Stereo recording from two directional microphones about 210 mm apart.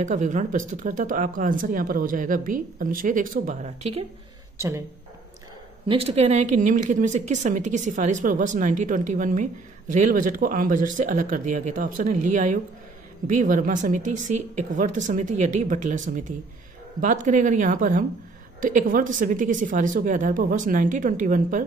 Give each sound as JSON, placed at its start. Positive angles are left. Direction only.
{"t": 0.0, "sound": "a woman's voice", "side_deg": -35}
{"t": 4.6, "sound": "speech", "side_deg": -15}
{"t": 5.9, "sound": "a woman's voice", "side_deg": -30}